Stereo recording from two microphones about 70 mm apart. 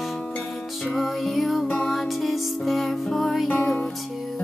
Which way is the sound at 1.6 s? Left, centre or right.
Centre.